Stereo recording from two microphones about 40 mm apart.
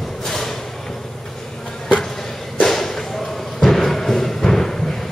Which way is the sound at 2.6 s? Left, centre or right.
Centre.